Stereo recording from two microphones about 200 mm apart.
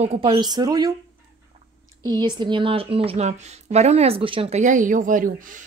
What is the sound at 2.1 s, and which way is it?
Speech, 20° right (ahead or behind).